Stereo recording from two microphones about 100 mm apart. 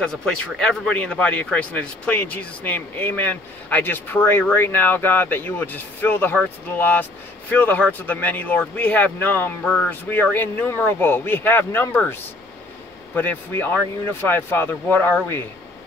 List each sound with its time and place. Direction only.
0.0 s a man's voice: 5° left (ahead or behind); by 12.0 s 20° left (ahead or behind)
13.1 s a man's voice: 20° left (ahead or behind)